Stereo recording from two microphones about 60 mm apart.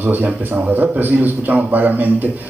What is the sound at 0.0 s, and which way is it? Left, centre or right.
A man's voice, right.